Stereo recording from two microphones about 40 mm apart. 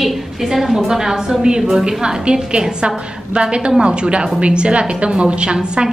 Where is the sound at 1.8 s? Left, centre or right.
Right.